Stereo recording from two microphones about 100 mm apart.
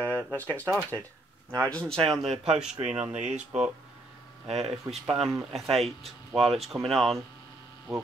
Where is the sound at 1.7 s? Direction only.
5° left (ahead or behind).